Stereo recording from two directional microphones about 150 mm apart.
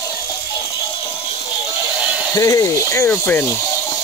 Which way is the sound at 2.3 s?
25° left (ahead or behind).